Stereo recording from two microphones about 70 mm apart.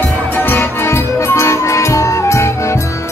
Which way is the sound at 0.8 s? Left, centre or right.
Left.